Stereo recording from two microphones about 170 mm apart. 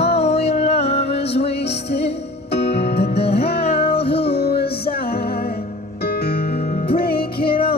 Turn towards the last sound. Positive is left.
turn(degrees=65)  # may be behind; listen again after turning